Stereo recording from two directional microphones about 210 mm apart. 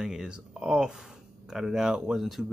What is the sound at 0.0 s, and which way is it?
Speech, 5° right (ahead or behind).